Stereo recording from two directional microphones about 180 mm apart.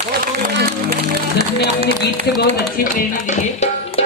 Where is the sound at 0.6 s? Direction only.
55° right (ahead or behind).